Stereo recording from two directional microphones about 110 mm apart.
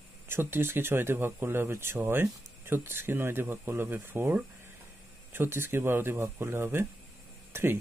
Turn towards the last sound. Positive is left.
turn(degrees=-20)  # may be behind; listen again after turning